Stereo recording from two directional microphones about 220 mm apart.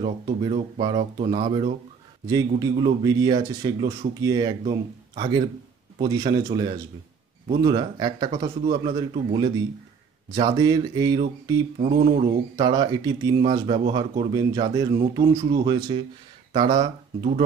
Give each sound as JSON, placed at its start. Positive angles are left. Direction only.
{"t": 0.0, "sound": "speech", "side_deg": -25}